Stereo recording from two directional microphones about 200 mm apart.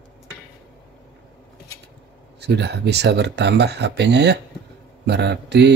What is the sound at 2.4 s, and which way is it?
Speech, 55° right (ahead or behind).